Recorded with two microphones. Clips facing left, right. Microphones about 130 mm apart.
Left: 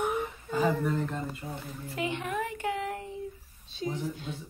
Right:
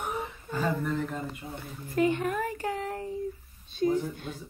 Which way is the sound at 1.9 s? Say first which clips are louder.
Right 7 dB; 45° right (ahead or behind).